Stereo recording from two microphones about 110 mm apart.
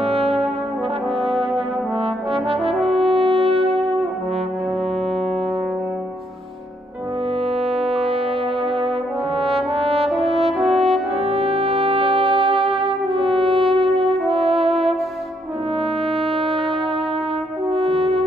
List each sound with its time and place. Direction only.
0.0 s brass instrument: 65° right (ahead or behind)
1.2 s brass instrument: centre (ahead or behind)
2.0 s brass instrument: 50° right (ahead or behind)
2.7 s french horn: centre (ahead or behind)
3.1 s french horn: 60° right (ahead or behind)
7.5 s music: 65° right (ahead or behind)
9.4 s brass instrument: 60° right (ahead or behind)
10.6 s french horn: centre (ahead or behind)
11.2 s music: 65° right (ahead or behind)
16.1 s music: 60° right (ahead or behind)
17.6 s french horn: 65° right (ahead or behind)